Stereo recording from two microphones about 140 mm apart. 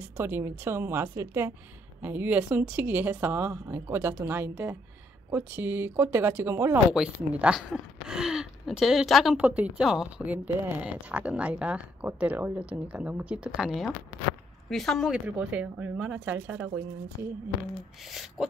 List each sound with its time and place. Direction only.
0.2 s speech: 15° right (ahead or behind)
6.9 s speech: 5° right (ahead or behind)
17.2 s speech: 20° right (ahead or behind)
18.0 s speech: centre (ahead or behind)